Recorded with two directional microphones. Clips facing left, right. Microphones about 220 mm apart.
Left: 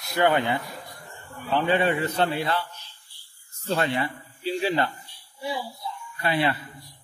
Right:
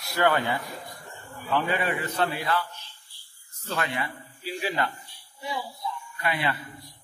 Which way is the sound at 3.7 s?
30° left (ahead or behind).